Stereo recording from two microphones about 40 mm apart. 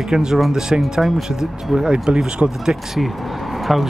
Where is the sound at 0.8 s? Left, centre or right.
Centre; by 2.7 s right.